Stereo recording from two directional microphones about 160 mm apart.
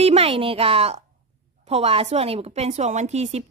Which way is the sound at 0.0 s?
40° right (ahead or behind).